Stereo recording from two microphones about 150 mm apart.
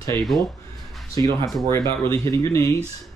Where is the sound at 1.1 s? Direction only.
20° left (ahead or behind).